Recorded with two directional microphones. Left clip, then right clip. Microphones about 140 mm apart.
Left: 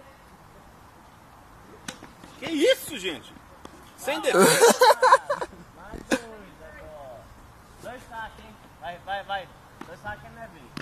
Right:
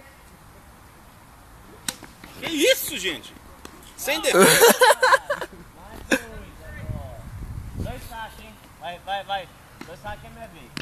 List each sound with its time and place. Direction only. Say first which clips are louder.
2.4 s a sound: right 2 dB; 40° left (ahead or behind)
4.0 s speech: right 3 dB; 25° left (ahead or behind)
4.4 s speech: right 3 dB; centre (ahead or behind)
4.8 s a sound: right 1 dB; 10° left (ahead or behind)
6.0 s throat clearing: right 4 dB; centre (ahead or behind)
8.8 s speech: right 3 dB; 30° right (ahead or behind)